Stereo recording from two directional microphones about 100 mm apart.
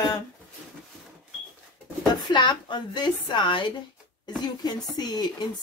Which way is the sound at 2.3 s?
50° left (ahead or behind).